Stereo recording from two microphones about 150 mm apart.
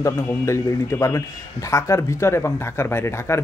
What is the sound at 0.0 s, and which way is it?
A man's voice, 20° left (ahead or behind).